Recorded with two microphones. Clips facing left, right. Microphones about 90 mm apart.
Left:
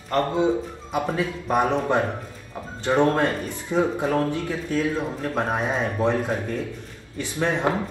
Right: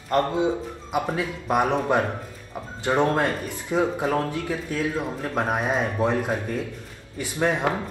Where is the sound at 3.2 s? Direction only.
25° left (ahead or behind).